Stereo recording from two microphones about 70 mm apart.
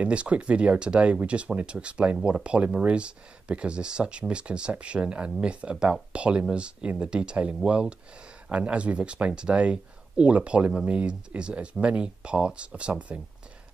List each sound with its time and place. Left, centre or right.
0.0 s speech: centre